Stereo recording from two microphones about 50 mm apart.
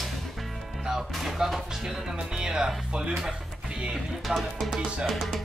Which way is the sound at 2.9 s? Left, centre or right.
Centre.